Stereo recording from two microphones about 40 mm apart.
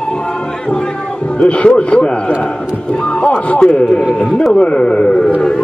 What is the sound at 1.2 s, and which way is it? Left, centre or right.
A man's voice, left.